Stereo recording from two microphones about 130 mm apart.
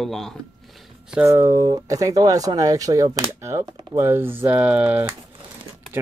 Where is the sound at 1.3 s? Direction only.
20° right (ahead or behind).